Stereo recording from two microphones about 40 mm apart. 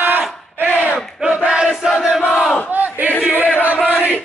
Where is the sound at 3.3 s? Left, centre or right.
Left.